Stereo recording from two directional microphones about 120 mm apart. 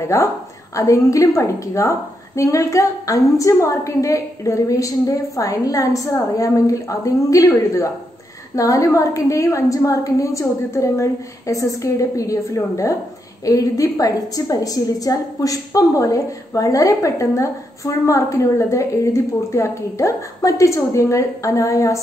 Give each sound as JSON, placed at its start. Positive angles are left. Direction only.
{"t": 0.0, "sound": "a woman's voice", "side_deg": 25}